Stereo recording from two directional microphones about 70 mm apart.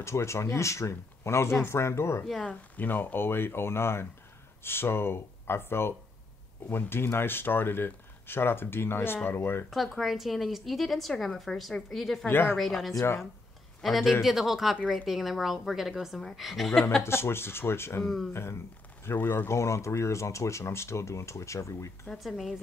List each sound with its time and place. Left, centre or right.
0.0 s speech: left
2.4 s speech: left
9.9 s a woman's voice: centre
12.3 s speech: left
12.5 s a woman's voice: centre
13.0 s speech: left
13.7 s a woman's voice: centre
17.0 s speech: left
18.0 s a woman's voice: centre
18.3 s speech: left
19.5 s speech: left
22.0 s a woman's voice: centre